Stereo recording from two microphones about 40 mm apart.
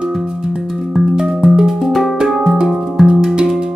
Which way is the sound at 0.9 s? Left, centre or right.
Centre.